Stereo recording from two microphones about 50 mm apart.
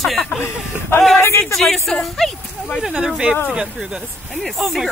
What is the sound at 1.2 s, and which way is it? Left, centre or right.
Speech, left.